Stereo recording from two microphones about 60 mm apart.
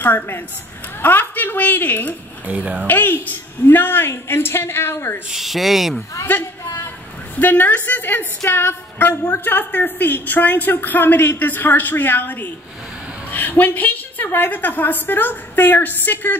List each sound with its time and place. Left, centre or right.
0.0 s a woman's voice: left
2.4 s speech: right
2.9 s a woman's voice: left
5.3 s speech: centre
6.3 s speech: left
6.6 s a sound: left
7.3 s a woman's voice: left